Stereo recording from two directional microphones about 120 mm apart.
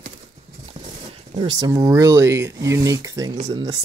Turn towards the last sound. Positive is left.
turn(degrees=-30)  # may be behind; listen again after turning